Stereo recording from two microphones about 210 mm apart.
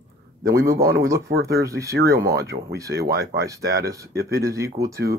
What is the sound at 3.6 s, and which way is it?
Speech, 50° right (ahead or behind).